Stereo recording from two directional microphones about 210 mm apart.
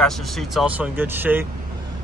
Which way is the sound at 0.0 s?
Centre (ahead or behind).